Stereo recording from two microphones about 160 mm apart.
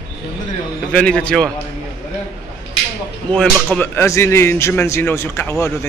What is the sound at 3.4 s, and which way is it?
Speech, 10° left (ahead or behind).